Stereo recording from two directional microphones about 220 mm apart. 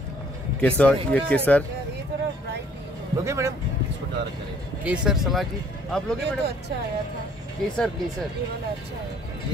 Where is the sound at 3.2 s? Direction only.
15° right (ahead or behind).